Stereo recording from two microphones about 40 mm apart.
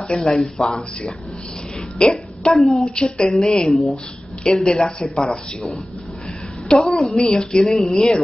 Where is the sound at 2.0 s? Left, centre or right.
Left.